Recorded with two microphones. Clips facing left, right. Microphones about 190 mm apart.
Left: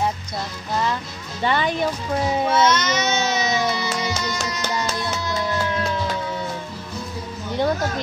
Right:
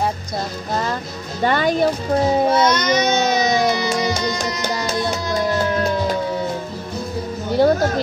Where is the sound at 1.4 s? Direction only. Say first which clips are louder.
Right 4 dB; 45° right (ahead or behind).